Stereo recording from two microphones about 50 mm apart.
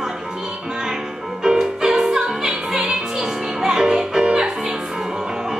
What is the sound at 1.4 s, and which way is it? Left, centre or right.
Music, centre.